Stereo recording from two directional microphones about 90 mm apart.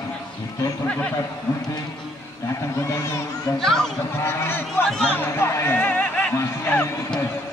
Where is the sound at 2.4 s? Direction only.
30° left (ahead or behind).